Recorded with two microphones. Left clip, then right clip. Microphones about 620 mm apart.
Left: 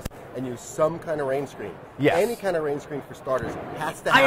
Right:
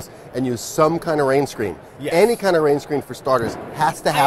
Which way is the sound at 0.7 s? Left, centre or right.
Right.